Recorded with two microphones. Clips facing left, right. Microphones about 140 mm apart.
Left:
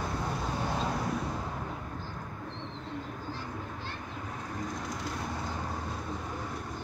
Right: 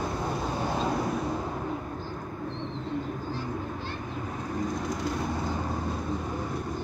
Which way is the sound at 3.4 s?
15° right (ahead or behind).